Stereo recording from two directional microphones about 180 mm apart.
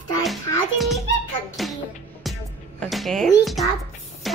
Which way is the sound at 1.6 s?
Centre (ahead or behind).